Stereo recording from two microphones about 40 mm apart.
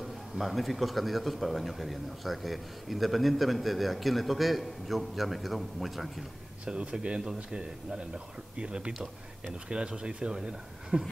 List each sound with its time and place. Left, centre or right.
0.4 s a man's voice: centre
6.6 s speech: right
8.5 s speech: right